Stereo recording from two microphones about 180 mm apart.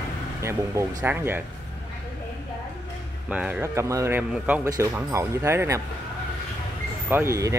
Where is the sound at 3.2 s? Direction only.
10° right (ahead or behind).